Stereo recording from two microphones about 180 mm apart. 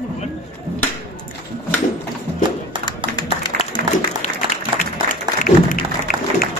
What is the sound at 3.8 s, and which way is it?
Music, 55° right (ahead or behind).